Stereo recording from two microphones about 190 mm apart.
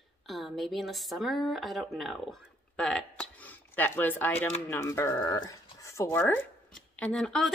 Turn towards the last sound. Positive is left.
turn(degrees=5)  # may be behind; listen again after turning